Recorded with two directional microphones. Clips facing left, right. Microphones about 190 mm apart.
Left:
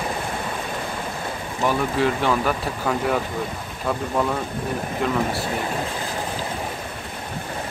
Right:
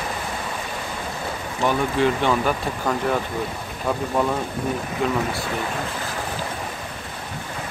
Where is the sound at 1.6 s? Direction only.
5° left (ahead or behind).